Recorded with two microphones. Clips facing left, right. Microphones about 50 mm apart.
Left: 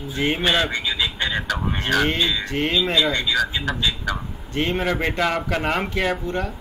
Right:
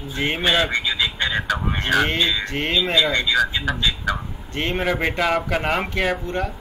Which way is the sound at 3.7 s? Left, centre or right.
Right.